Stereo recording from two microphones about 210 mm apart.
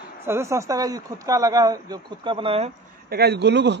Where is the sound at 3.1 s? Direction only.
50° right (ahead or behind).